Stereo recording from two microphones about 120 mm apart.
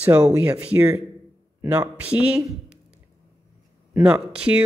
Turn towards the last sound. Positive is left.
turn(degrees=-10)  # may be behind; listen again after turning